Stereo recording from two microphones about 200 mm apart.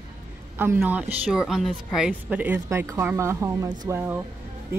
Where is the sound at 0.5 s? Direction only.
10° right (ahead or behind).